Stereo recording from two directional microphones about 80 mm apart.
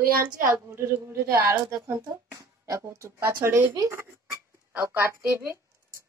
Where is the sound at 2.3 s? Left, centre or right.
Right.